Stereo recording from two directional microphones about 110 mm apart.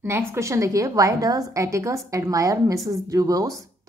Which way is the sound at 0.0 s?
25° right (ahead or behind).